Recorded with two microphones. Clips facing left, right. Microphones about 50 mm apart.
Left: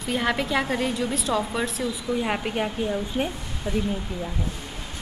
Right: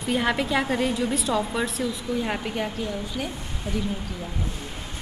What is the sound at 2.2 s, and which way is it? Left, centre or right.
A woman's voice, centre.